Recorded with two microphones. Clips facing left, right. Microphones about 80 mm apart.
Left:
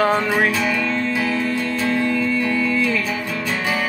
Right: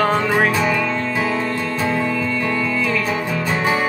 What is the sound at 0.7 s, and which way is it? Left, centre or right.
Music, centre.